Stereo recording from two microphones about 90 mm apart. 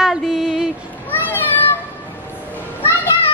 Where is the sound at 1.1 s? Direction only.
20° left (ahead or behind).